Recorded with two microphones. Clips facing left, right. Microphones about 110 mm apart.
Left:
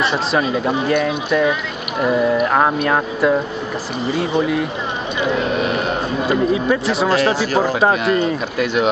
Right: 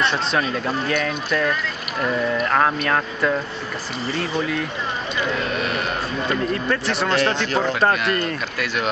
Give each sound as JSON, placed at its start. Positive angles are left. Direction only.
{"t": 0.0, "sound": "speech", "side_deg": 0}
{"t": 5.2, "sound": "vehicle", "side_deg": 15}
{"t": 6.2, "sound": "speech", "side_deg": 10}
{"t": 8.0, "sound": "speech", "side_deg": 15}